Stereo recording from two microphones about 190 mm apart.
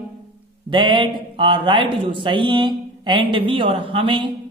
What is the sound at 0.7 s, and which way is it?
A man's voice, 25° right (ahead or behind).